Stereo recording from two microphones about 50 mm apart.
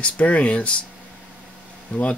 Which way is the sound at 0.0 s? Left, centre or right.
Left.